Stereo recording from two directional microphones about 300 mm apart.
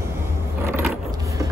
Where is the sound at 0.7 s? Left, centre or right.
Centre.